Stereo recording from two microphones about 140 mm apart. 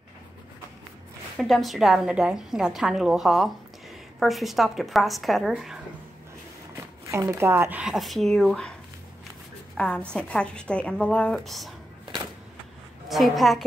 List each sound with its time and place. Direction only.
1.4 s a woman's voice: centre (ahead or behind)
7.1 s speech: 20° right (ahead or behind)
7.8 s a woman's voice: centre (ahead or behind)
9.8 s a woman's voice: 10° left (ahead or behind)
13.1 s a woman's voice: centre (ahead or behind)